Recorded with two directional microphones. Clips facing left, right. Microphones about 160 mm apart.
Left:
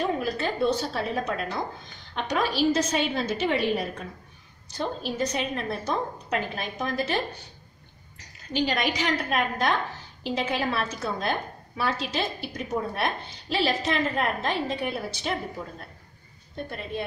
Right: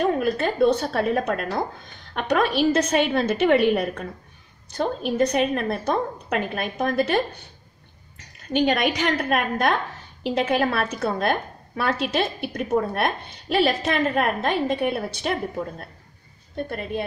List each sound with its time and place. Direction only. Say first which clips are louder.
0.0 s a woman's voice: right 5 dB; 55° right (ahead or behind)
8.5 s a woman's voice: right 5 dB; 60° right (ahead or behind)